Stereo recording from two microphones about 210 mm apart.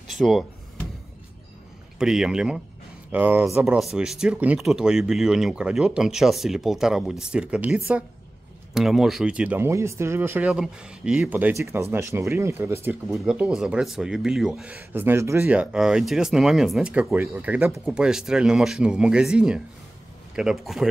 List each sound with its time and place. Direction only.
0.1 s speech: centre (ahead or behind)
2.0 s speech: 5° right (ahead or behind)